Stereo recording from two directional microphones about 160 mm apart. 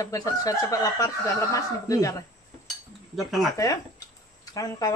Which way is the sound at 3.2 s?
Centre (ahead or behind).